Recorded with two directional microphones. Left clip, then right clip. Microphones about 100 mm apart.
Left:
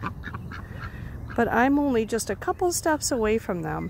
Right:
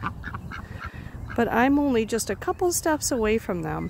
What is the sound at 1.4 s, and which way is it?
Speech, 15° right (ahead or behind).